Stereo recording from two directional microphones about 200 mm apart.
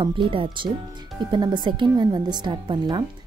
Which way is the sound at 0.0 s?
25° right (ahead or behind).